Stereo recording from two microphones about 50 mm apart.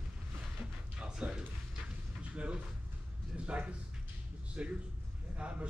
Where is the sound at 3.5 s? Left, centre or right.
Right.